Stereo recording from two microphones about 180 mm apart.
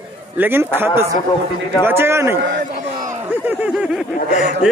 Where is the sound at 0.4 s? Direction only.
10° right (ahead or behind).